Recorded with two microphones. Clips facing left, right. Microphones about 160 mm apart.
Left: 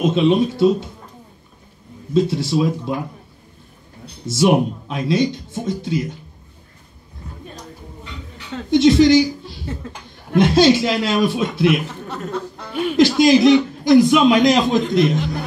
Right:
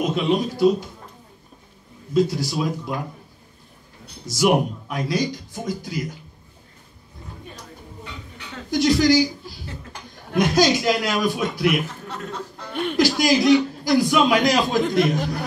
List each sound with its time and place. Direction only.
0.1 s a man's voice: 25° left (ahead or behind)
2.1 s a man's voice: 25° left (ahead or behind)
4.3 s a man's voice: 25° left (ahead or behind)
8.6 s a man's voice: 25° left (ahead or behind)
12.9 s a man's voice: 20° left (ahead or behind)